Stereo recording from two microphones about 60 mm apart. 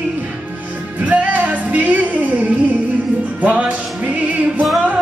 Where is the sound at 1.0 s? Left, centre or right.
Right.